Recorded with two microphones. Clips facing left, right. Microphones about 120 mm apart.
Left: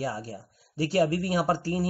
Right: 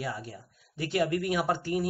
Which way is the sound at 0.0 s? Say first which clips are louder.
Left 4 dB; 35° left (ahead or behind).